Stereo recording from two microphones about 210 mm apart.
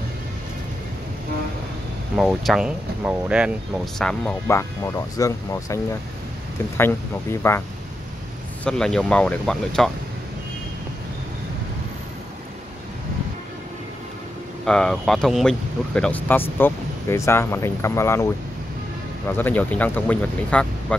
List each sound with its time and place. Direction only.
2.1 s speech: centre (ahead or behind); by 5.8 s 15° left (ahead or behind)
6.8 s speech: 10° left (ahead or behind)
8.6 s speech: 5° left (ahead or behind)
14.7 s speech: 5° left (ahead or behind)